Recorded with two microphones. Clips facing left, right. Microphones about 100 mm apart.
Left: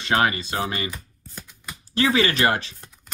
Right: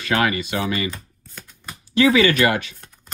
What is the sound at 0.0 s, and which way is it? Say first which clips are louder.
Speech: right 1 dB; 30° left (ahead or behind).